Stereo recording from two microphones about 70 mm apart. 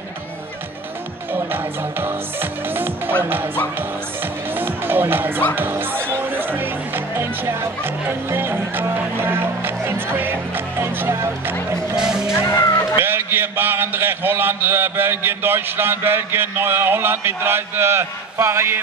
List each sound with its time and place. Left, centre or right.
1.3 s a man's voice: right
4.2 s music: right
5.6 s a man's voice: right
11.9 s speech: centre
12.4 s music: left
13.0 s a man's voice: right